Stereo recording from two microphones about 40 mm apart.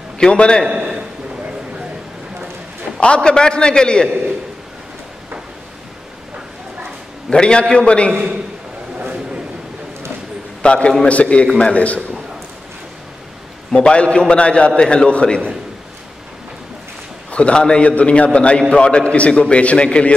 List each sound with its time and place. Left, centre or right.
0.2 s a man's voice: left
3.2 s a man's voice: left
7.2 s a man's voice: left
10.6 s a man's voice: left
13.7 s a man's voice: left
17.3 s a man's voice: left